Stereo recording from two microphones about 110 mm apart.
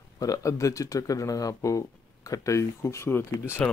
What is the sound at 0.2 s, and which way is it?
Speech, 30° left (ahead or behind).